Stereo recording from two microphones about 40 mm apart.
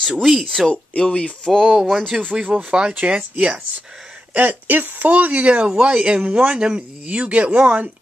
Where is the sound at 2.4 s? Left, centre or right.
Right.